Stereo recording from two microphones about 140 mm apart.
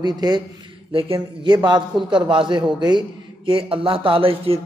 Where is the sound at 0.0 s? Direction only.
30° right (ahead or behind).